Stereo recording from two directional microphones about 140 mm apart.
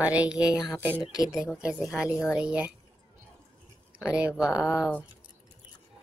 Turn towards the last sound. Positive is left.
turn(degrees=25)  # may be behind; listen again after turning